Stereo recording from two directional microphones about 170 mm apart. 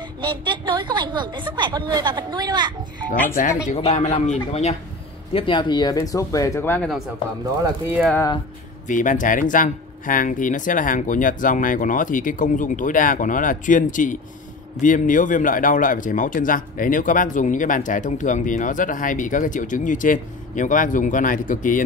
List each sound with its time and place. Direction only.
0.2 s a woman's voice: 25° right (ahead or behind)
3.7 s a man's voice: 40° left (ahead or behind)
5.3 s speech: 30° left (ahead or behind); by 6.9 s 10° left (ahead or behind)
8.8 s speech: 50° left (ahead or behind)